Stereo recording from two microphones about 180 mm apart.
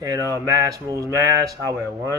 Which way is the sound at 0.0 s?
20° right (ahead or behind).